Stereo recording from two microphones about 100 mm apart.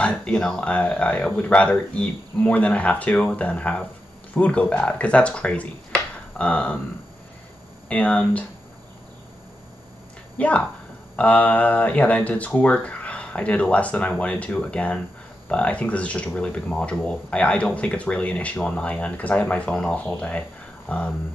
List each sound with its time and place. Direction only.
0.0 s speech: 10° left (ahead or behind)
7.9 s speech: 15° left (ahead or behind)
10.3 s speech: 15° left (ahead or behind)